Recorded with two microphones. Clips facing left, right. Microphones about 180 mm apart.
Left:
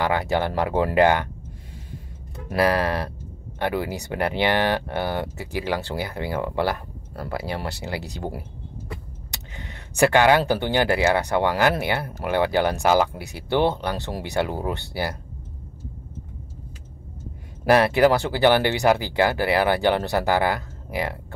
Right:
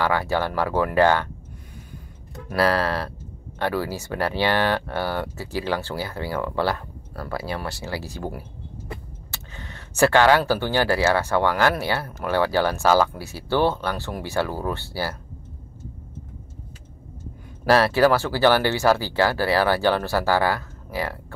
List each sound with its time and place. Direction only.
0.0 s speech: 20° left (ahead or behind)
2.5 s speech: 15° left (ahead or behind)
17.6 s speech: 15° left (ahead or behind)